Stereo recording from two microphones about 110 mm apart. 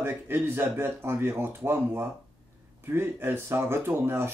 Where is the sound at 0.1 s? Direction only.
20° right (ahead or behind).